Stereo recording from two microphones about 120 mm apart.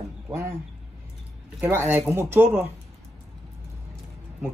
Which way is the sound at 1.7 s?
15° right (ahead or behind).